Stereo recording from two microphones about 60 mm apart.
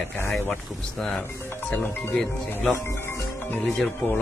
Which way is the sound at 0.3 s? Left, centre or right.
Centre.